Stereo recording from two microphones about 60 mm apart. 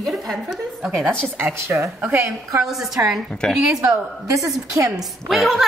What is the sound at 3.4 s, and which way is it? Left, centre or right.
Speech, centre.